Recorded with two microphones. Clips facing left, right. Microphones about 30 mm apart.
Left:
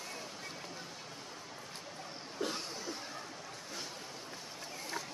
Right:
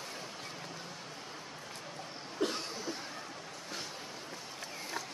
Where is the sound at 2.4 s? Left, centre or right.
Right.